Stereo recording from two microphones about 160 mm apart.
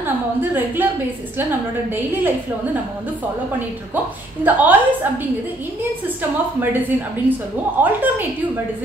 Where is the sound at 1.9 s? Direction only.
10° right (ahead or behind).